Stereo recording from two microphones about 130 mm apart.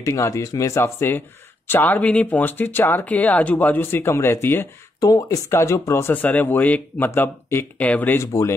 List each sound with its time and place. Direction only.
0.0 s speech: 25° left (ahead or behind)